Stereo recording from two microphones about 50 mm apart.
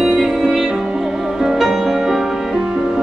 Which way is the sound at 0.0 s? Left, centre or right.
Centre.